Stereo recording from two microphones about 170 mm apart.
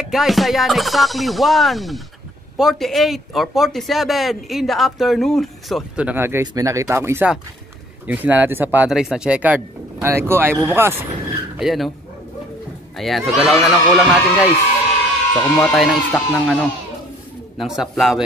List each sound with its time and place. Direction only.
0.0 s speech: centre (ahead or behind)
11.5 s speech: centre (ahead or behind)
12.9 s speech: centre (ahead or behind)
15.5 s speech: centre (ahead or behind)
17.6 s speech: centre (ahead or behind)